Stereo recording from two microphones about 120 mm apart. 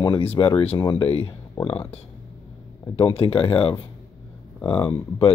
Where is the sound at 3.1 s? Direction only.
50° left (ahead or behind).